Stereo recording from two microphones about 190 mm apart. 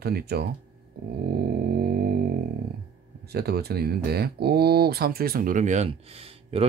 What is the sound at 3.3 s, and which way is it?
Speech, 55° right (ahead or behind).